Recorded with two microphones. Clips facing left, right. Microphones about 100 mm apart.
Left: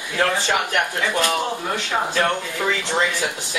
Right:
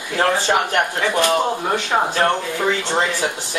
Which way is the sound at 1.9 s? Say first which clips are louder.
Right 3 dB; 30° right (ahead or behind).